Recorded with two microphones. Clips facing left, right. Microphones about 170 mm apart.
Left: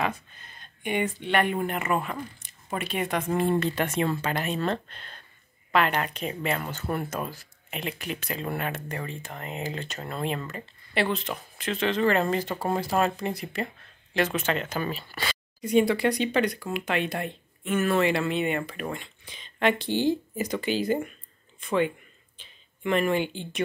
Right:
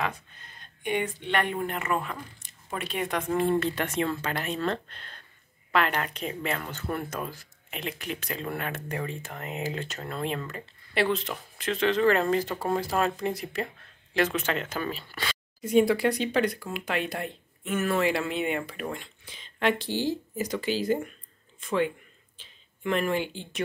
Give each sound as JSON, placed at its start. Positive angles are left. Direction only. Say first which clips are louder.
{"t": 0.6, "sound": "speech", "louder": "left 1 dB", "side_deg": 0}
{"t": 8.8, "sound": "speech", "louder": "right 1 dB", "side_deg": -5}
{"t": 10.0, "sound": "speech", "louder": "left 2 dB", "side_deg": 10}
{"t": 19.9, "sound": "speech", "louder": "left 4 dB", "side_deg": 60}
{"t": 20.8, "sound": "speech", "louder": "left 1 dB", "side_deg": 0}